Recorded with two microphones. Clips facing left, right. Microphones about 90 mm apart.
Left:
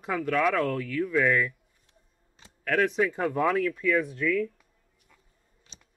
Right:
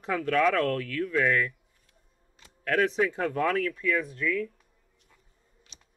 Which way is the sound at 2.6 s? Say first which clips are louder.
Even; centre (ahead or behind).